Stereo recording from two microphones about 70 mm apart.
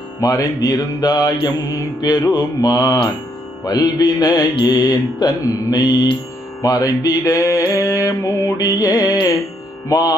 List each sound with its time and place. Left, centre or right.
0.2 s mantra: left
3.6 s music: left
6.6 s mantra: left